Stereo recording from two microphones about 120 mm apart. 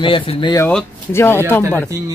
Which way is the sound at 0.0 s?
45° left (ahead or behind).